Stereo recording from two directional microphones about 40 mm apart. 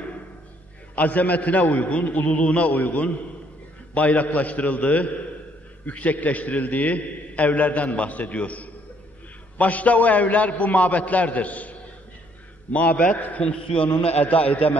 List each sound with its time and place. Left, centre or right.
0.9 s a man's voice: left
2.7 s a man's voice: left
12.7 s a man's voice: left
13.4 s a man's voice: left
13.8 s a man's voice: left